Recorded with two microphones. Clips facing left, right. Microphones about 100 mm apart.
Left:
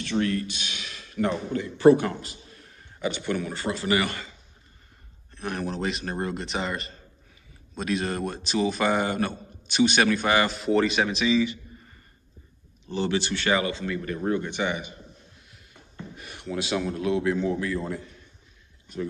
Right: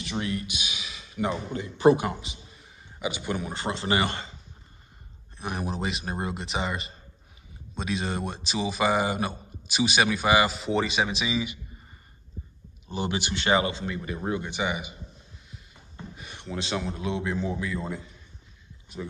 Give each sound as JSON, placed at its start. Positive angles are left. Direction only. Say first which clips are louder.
{"t": 0.0, "sound": "speech", "louder": "left 5 dB", "side_deg": -15}
{"t": 1.5, "sound": "speech", "louder": "left 3 dB", "side_deg": -20}
{"t": 2.1, "sound": "a man's voice", "louder": "left 2 dB", "side_deg": -5}
{"t": 5.4, "sound": "a man's voice", "louder": "left 2 dB", "side_deg": -5}
{"t": 11.3, "sound": "speech", "louder": "left 6 dB", "side_deg": -15}
{"t": 12.8, "sound": "speech", "louder": "left 4 dB", "side_deg": -15}